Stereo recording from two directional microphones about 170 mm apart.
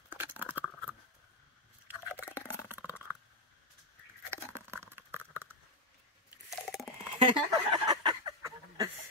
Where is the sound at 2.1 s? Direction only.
15° left (ahead or behind).